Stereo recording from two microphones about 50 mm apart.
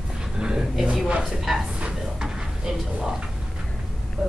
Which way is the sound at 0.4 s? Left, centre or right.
Centre.